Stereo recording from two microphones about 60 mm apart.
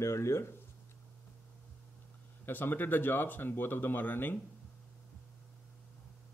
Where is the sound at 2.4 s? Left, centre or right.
Left.